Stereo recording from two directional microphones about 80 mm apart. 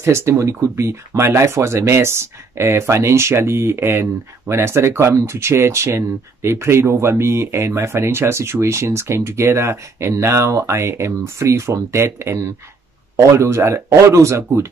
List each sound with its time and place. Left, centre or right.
0.0 s speech: right